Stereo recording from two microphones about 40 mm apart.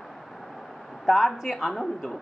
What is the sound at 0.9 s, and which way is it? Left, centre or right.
A woman's voice, centre.